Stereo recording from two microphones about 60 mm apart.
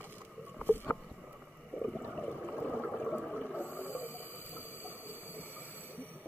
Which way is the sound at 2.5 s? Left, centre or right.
Left.